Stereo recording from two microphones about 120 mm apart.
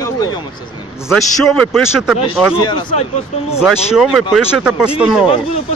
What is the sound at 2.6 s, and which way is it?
Speech, 40° left (ahead or behind).